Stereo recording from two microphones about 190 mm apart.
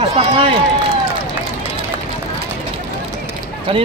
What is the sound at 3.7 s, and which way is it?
Speech, 30° right (ahead or behind).